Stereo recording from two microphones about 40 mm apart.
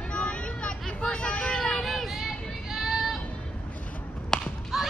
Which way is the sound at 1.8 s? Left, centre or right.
Centre.